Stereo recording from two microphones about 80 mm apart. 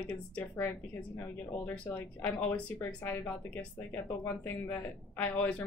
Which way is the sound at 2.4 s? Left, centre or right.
Centre.